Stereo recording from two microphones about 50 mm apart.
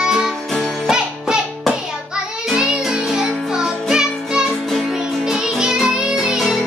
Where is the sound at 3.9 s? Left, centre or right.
Centre.